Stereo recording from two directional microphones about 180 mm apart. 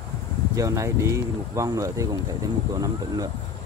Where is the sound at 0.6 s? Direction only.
15° right (ahead or behind).